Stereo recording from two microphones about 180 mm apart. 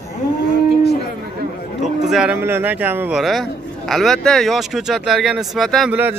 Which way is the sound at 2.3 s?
10° right (ahead or behind).